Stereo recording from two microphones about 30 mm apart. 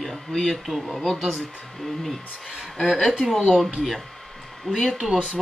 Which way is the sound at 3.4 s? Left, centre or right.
Centre.